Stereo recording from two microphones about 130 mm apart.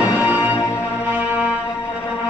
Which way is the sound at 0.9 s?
15° right (ahead or behind).